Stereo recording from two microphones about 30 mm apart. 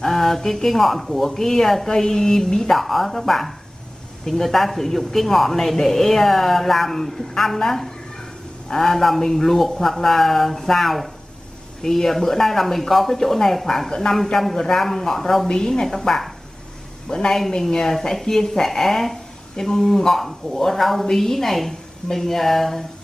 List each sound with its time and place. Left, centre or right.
0.0 s a sound: centre
0.7 s speech: centre
1.3 s a man's voice: centre
2.7 s a man's voice: centre
11.8 s a man's voice: centre
13.8 s speech: centre
14.3 s a man's voice: centre
17.1 s a man's voice: left; by 22.8 s centre